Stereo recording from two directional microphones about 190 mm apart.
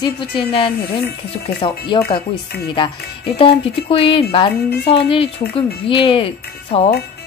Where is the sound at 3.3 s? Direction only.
30° left (ahead or behind).